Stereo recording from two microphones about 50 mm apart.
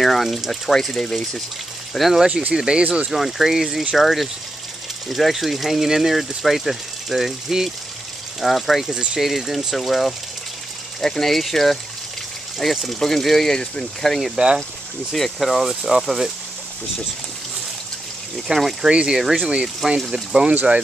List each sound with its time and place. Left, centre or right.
0.0 s speech: centre
2.0 s speech: centre
2.5 s speech: centre
3.1 s speech: centre
14.3 s speech: centre
15.1 s speech: centre
18.5 s speech: centre
18.9 s speech: right